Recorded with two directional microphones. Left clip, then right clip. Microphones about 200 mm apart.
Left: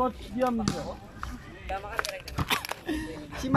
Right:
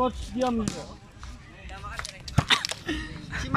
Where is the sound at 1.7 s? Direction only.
55° left (ahead or behind).